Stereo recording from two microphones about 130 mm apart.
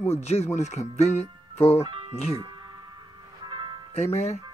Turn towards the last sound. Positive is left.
turn(degrees=60)  # may be behind; listen again after turning